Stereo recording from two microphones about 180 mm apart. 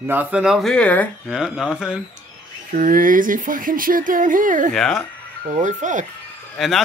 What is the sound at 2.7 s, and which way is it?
Speech, 50° right (ahead or behind).